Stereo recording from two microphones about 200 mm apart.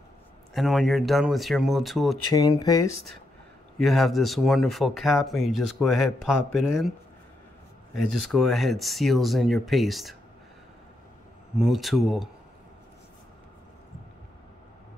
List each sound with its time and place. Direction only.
0.6 s speech: centre (ahead or behind)
2.3 s speech: 20° left (ahead or behind)
3.7 s speech: centre (ahead or behind)
7.9 s speech: centre (ahead or behind)
11.5 s speech: centre (ahead or behind)